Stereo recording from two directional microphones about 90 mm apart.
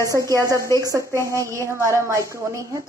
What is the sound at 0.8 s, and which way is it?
A woman's voice, 40° right (ahead or behind).